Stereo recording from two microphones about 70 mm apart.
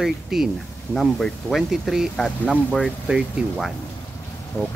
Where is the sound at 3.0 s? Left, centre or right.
Centre.